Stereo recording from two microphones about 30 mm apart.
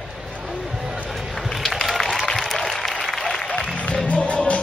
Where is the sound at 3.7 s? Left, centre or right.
Left.